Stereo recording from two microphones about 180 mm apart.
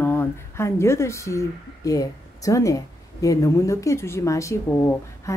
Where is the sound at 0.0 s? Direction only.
10° left (ahead or behind).